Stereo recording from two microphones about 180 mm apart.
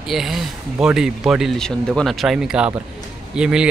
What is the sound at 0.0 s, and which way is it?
Speech, centre (ahead or behind).